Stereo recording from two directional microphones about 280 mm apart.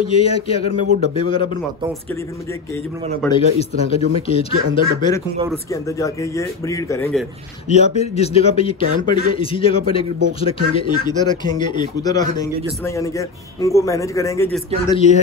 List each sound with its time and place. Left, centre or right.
0.0 s speech: left
2.7 s speech: centre
7.6 s speech: left
14.9 s speech: left